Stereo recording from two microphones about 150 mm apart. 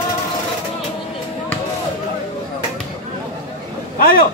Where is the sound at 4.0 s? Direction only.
75° left (ahead or behind).